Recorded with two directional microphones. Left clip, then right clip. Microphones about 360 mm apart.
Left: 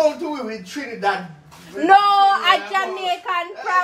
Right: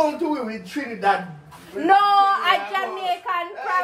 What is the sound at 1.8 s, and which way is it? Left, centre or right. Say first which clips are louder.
A woman's voice: left 3 dB; left.